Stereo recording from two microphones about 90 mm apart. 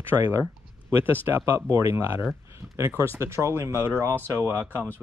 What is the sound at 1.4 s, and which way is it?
Speech, 35° right (ahead or behind).